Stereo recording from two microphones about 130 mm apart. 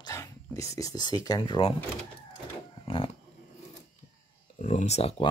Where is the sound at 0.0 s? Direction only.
25° left (ahead or behind).